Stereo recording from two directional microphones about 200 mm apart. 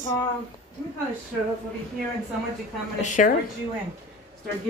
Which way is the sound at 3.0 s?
40° left (ahead or behind).